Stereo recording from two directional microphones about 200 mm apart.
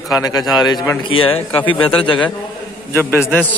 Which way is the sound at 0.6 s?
20° left (ahead or behind).